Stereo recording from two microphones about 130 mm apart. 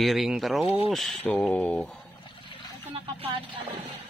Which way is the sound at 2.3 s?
45° left (ahead or behind).